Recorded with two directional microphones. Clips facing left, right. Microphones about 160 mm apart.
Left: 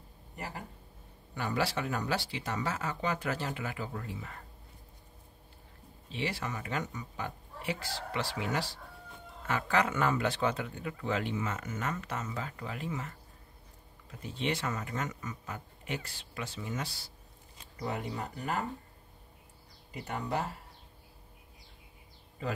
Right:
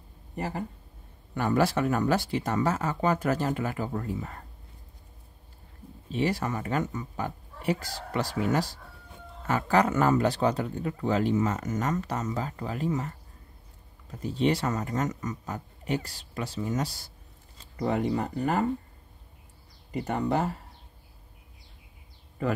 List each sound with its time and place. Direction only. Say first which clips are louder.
1.3 s speech: right 8 dB; 50° right (ahead or behind)
6.0 s speech: right 8 dB; 45° right (ahead or behind)
14.2 s speech: right 8 dB; 40° right (ahead or behind)
17.7 s speech: right 9 dB; 60° right (ahead or behind)